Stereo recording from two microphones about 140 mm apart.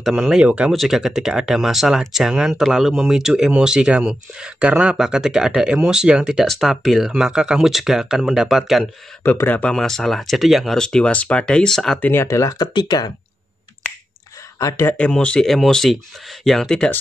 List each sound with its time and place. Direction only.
0.0 s speech: 5° right (ahead or behind)
9.2 s speech: 10° left (ahead or behind)
12.1 s speech: 20° left (ahead or behind)
14.6 s speech: 20° left (ahead or behind)
15.0 s speech: 10° left (ahead or behind)